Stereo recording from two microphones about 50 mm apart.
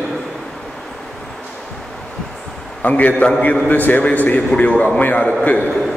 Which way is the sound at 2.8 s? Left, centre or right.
Left.